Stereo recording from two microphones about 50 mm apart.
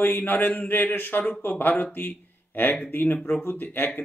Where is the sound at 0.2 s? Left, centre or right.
Left.